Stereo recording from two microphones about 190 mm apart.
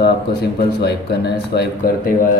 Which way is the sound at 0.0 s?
60° left (ahead or behind).